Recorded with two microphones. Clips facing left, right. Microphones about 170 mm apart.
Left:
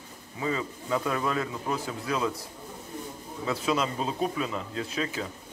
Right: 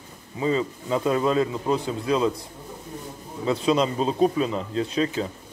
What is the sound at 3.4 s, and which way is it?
A man's voice, 25° right (ahead or behind).